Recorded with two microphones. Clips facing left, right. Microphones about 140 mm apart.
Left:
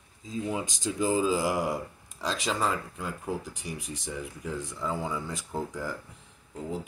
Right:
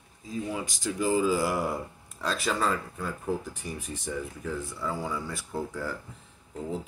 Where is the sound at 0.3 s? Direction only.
20° left (ahead or behind).